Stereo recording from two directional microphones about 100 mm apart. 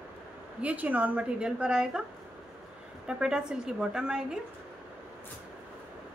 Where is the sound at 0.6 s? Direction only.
15° right (ahead or behind).